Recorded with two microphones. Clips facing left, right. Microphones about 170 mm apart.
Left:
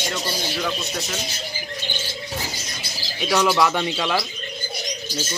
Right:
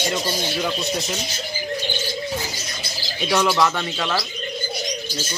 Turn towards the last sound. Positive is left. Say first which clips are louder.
# left 1 dB
turn(degrees=5)  # may be behind; listen again after turning